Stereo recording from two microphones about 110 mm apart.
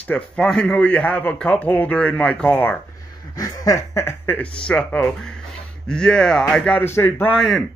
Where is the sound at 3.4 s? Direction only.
30° left (ahead or behind); by 6.8 s 10° left (ahead or behind).